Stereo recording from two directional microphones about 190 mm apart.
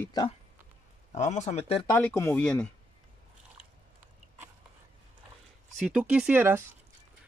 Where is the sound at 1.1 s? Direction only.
40° left (ahead or behind).